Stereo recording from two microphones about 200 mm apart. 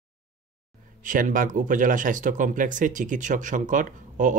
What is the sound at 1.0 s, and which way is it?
Speech, 40° right (ahead or behind).